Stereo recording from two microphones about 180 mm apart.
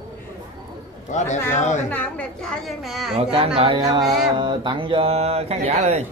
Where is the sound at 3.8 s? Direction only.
20° right (ahead or behind).